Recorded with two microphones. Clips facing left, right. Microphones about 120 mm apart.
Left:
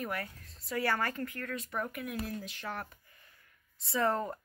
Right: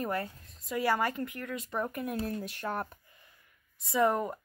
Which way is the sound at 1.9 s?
35° right (ahead or behind).